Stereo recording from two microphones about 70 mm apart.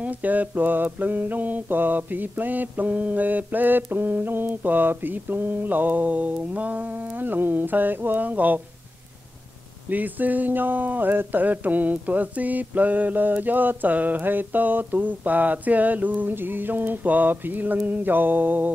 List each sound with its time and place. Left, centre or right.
0.0 s speech: right
9.8 s speech: right